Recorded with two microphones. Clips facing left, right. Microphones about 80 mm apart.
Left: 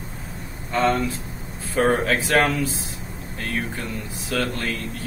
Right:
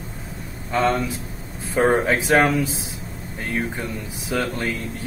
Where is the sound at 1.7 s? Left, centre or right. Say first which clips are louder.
Right 2 dB; centre.